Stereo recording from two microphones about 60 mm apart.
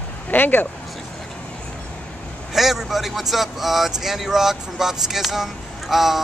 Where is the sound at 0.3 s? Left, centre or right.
Left.